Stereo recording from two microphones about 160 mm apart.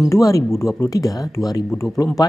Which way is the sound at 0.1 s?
20° left (ahead or behind).